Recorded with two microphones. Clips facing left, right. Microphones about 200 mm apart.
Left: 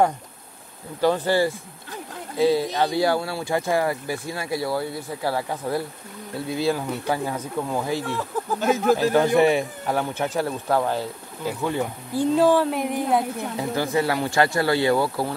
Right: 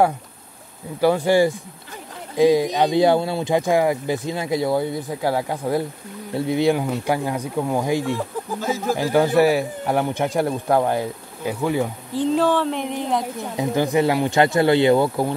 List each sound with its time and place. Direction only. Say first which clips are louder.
1.0 s speech: right 4 dB; 15° right (ahead or behind)
8.5 s speech: left 4 dB; 65° left (ahead or behind)
8.9 s speech: right 4 dB; 10° right (ahead or behind)
12.2 s speech: left 1 dB; 10° left (ahead or behind)
13.6 s speech: right 5 dB; 20° right (ahead or behind)